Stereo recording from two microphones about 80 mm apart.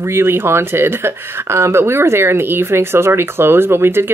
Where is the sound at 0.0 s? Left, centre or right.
Right.